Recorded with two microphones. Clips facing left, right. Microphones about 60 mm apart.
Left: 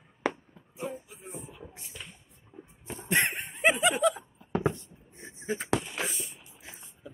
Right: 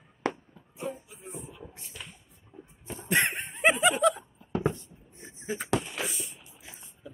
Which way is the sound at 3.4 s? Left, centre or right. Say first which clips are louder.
Right 3 dB; centre.